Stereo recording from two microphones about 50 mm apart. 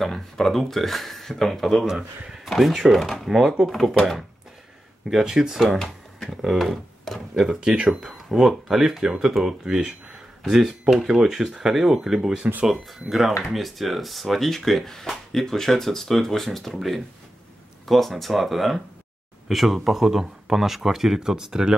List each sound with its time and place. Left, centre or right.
0.0 s speech: centre
5.1 s speech: centre
6.1 s a sound: centre
6.4 s speech: centre
7.3 s speech: centre
8.3 s speech: centre